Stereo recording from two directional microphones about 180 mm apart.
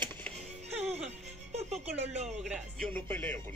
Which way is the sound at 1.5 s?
35° right (ahead or behind).